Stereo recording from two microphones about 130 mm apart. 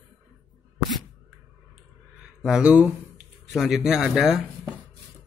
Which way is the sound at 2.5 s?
5° right (ahead or behind).